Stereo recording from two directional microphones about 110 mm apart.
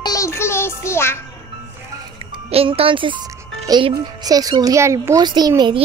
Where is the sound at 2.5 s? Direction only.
60° right (ahead or behind).